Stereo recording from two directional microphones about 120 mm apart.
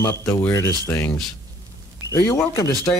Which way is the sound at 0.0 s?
20° left (ahead or behind).